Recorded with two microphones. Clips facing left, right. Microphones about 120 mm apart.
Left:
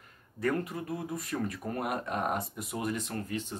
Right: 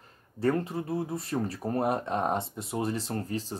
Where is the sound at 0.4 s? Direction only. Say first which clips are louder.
Right 4 dB; 30° right (ahead or behind).